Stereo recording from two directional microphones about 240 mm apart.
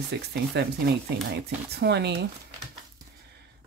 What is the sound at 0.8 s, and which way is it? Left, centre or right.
Speech, right.